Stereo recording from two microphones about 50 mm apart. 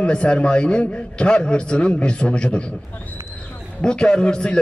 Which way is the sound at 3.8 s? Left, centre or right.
Centre.